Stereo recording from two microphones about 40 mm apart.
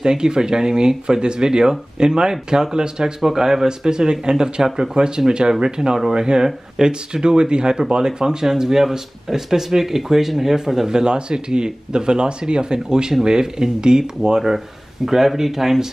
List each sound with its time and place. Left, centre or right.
0.0 s speech: centre